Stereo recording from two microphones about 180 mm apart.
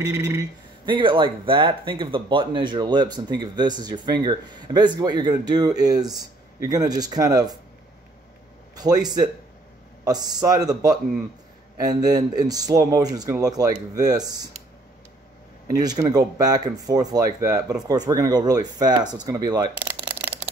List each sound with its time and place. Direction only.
0.0 s speech: 20° right (ahead or behind)
8.7 s speech: 20° right (ahead or behind)
10.0 s speech: 20° right (ahead or behind)
15.8 s speech: 20° right (ahead or behind)